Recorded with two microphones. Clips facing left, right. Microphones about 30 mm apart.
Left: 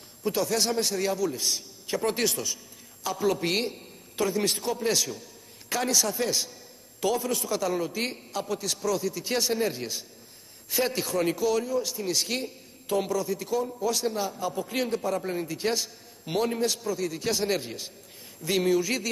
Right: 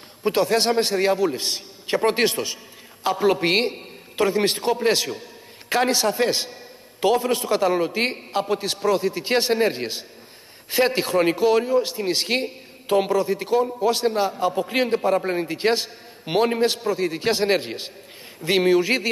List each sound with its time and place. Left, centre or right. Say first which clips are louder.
0.2 s a man's voice: right 7 dB; right